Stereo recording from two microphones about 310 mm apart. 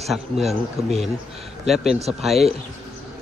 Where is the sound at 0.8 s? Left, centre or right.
Centre.